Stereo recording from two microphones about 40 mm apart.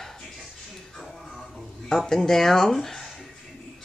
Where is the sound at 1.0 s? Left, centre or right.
Centre.